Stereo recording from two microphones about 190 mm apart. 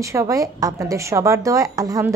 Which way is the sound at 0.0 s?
15° right (ahead or behind).